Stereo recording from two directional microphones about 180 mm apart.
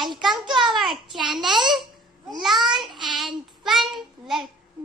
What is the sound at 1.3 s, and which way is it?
Babbling, 25° right (ahead or behind).